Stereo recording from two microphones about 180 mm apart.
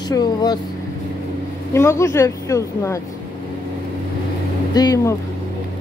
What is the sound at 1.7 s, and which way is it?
Speech, 15° left (ahead or behind).